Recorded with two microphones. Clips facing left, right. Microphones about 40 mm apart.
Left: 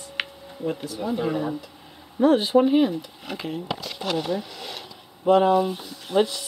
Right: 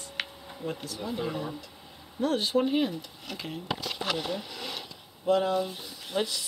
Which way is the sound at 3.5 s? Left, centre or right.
Centre.